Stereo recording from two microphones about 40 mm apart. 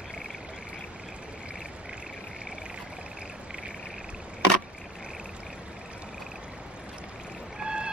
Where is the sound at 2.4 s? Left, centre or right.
Right.